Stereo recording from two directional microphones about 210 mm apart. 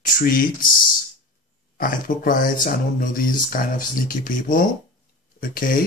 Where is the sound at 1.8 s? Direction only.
40° left (ahead or behind).